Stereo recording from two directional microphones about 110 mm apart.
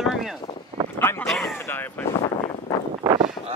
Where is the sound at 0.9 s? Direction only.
20° left (ahead or behind).